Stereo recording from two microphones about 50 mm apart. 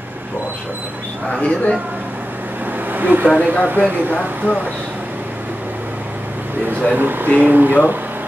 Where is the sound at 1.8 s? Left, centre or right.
Right.